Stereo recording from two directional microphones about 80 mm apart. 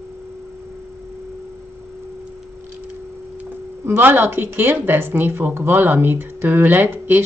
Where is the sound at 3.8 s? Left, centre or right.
Right.